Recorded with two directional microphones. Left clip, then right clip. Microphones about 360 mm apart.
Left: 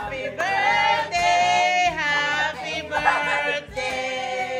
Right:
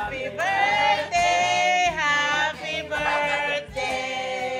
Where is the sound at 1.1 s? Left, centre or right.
Centre.